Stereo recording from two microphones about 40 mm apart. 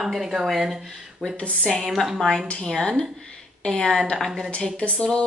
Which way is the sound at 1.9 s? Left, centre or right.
Centre.